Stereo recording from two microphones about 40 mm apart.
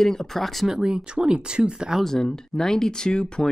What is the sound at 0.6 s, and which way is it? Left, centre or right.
Speech, centre.